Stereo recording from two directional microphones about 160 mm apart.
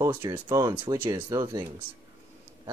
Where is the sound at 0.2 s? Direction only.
25° right (ahead or behind).